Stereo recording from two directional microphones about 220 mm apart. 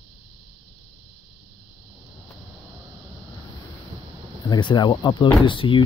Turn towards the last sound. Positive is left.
turn(degrees=20)  # may be behind; listen again after turning